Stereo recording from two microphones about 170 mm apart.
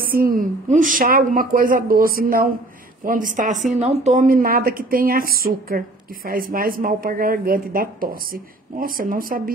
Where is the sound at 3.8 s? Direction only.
40° right (ahead or behind).